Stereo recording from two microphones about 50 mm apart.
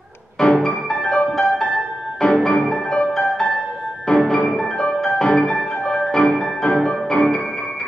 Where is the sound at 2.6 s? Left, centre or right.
Centre.